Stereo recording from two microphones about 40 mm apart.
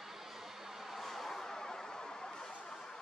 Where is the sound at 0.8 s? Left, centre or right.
Centre.